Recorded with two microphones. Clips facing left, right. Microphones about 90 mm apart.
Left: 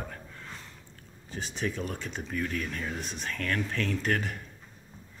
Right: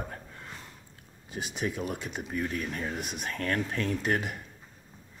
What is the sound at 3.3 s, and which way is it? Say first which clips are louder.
Speech: right 1 dB; 30° right (ahead or behind).